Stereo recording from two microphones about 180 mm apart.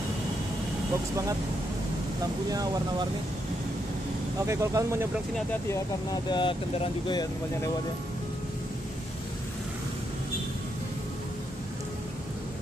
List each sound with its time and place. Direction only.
2.5 s speech: 20° right (ahead or behind)
4.5 s speech: 15° right (ahead or behind)
6.3 s speech: 25° left (ahead or behind)